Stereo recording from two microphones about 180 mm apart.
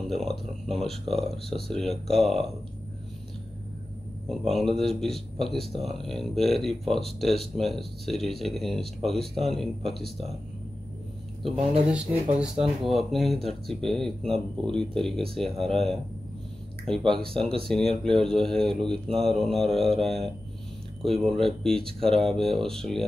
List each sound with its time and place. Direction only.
0.0 s a man's voice: centre (ahead or behind)
4.3 s a man's voice: centre (ahead or behind)
11.9 s a man's voice: 5° right (ahead or behind)
17.0 s speech: 30° right (ahead or behind)
17.6 s a man's voice: 5° left (ahead or behind)